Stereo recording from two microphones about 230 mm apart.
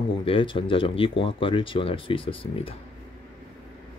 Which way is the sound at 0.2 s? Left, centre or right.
Left.